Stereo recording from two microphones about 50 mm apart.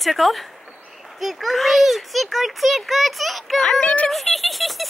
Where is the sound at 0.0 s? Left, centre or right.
Centre.